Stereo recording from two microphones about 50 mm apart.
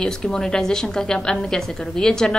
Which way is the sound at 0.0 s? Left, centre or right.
Centre.